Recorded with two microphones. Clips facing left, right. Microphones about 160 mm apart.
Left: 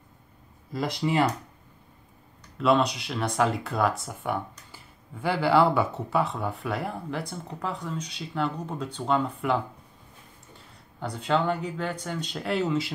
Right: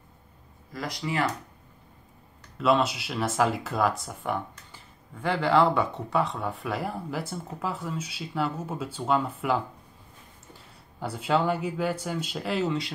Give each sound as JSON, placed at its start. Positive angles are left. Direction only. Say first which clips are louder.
{"t": 0.7, "sound": "speech", "louder": "left 5 dB", "side_deg": 25}
{"t": 2.5, "sound": "speech", "louder": "left 1 dB", "side_deg": 0}
{"t": 11.0, "sound": "speech", "louder": "even", "side_deg": -5}